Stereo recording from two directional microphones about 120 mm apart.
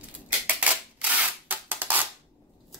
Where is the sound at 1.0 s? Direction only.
15° right (ahead or behind).